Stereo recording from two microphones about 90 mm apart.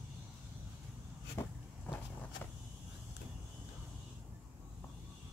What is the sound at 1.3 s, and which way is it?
Vehicle, 30° left (ahead or behind).